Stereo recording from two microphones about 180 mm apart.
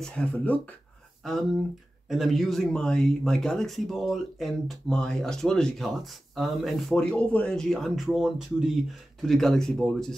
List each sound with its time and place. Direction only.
0.0 s speech: 5° left (ahead or behind)
2.0 s speech: centre (ahead or behind)